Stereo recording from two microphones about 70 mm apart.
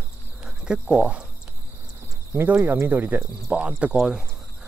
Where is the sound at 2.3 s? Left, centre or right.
Right.